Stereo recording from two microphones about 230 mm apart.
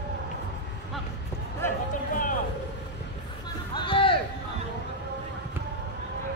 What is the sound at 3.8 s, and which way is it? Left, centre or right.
Music, left.